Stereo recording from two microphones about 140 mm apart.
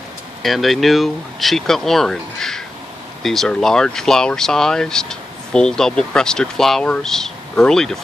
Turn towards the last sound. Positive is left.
turn(degrees=5)  # may be behind; listen again after turning